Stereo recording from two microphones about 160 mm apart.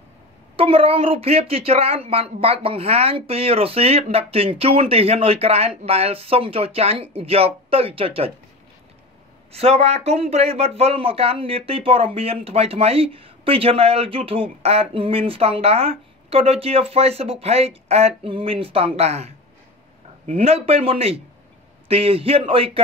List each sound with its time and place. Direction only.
0.6 s speech: 35° right (ahead or behind)
9.5 s speech: 40° right (ahead or behind)